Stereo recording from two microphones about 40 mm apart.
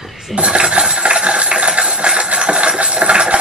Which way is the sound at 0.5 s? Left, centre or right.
Right.